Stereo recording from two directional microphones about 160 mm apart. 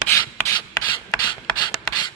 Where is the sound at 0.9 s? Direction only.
25° left (ahead or behind).